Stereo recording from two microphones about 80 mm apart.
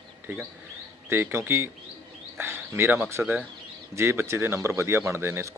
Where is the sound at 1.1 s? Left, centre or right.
Right.